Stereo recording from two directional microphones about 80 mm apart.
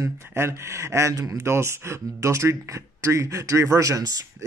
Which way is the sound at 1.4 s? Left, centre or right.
Right.